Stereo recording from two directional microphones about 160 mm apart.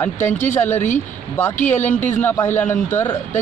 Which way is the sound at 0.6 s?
15° left (ahead or behind).